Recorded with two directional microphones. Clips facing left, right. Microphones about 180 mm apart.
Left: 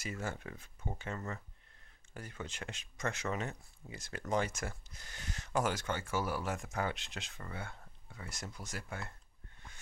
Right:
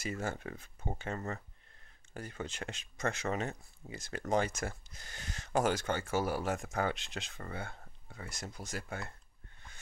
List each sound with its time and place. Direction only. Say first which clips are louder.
0.0 s speech: right 3 dB; 40° right (ahead or behind)